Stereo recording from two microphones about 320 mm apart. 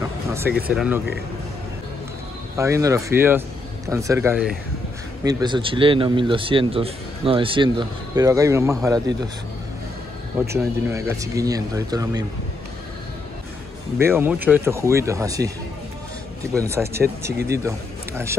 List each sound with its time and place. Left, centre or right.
0.0 s a sound: centre
0.7 s speech: centre
2.5 s speech: centre
10.4 s speech: centre
13.9 s speech: centre
16.5 s a man's voice: centre